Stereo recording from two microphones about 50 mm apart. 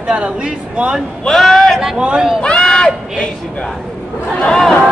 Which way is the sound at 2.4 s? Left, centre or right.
Centre.